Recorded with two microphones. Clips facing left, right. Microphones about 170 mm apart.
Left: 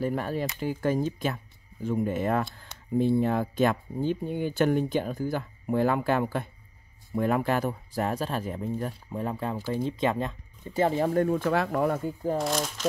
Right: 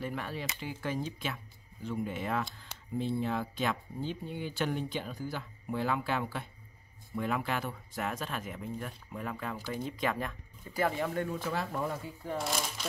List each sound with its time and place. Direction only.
0.0 s speech: 45° left (ahead or behind); by 11.1 s 25° left (ahead or behind)
11.1 s speech: 50° left (ahead or behind); by 11.9 s 75° left (ahead or behind)
11.9 s speech: 50° left (ahead or behind)
12.4 s speech: 5° right (ahead or behind)